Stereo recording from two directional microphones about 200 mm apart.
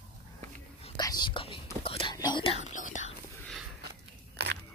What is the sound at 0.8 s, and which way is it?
Whispering, 20° left (ahead or behind).